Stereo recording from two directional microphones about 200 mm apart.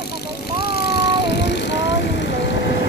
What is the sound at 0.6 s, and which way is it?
Vehicle, 50° left (ahead or behind).